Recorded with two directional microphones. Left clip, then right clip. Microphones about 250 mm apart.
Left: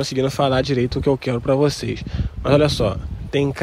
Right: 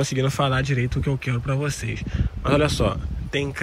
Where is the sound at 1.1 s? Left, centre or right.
Left.